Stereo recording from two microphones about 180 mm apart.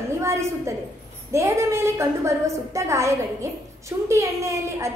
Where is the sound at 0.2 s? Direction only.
15° right (ahead or behind).